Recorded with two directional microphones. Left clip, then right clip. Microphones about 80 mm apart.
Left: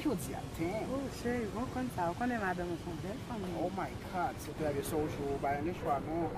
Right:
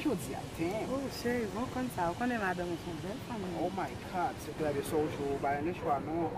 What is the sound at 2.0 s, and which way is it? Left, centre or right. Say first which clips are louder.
Speech: right 2 dB; centre.